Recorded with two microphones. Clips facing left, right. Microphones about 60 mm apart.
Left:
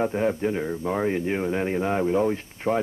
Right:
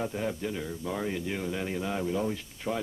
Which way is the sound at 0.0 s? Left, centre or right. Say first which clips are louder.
Left 8 dB; left.